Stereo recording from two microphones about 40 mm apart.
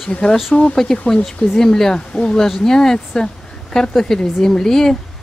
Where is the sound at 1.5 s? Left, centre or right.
Centre.